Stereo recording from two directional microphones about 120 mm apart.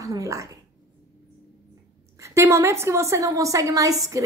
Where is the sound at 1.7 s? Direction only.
25° right (ahead or behind).